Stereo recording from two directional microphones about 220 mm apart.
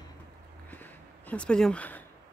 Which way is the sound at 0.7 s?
5° left (ahead or behind).